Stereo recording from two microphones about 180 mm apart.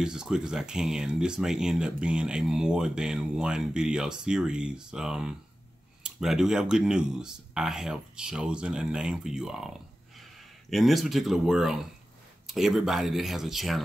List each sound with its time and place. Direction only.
0.0 s speech: 5° right (ahead or behind)